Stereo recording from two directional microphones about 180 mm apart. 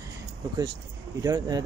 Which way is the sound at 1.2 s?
20° right (ahead or behind).